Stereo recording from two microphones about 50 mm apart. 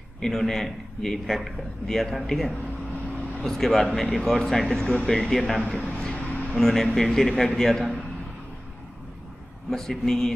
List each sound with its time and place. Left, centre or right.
0.2 s a man's voice: centre
3.1 s vehicle: centre
3.5 s a man's voice: centre
5.8 s a sound: centre
6.5 s a man's voice: centre
9.7 s a man's voice: centre